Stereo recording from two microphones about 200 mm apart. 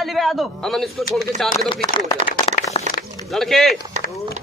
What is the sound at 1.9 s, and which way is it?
Speech, 20° left (ahead or behind).